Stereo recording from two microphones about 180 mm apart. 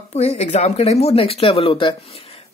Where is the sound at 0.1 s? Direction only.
35° left (ahead or behind).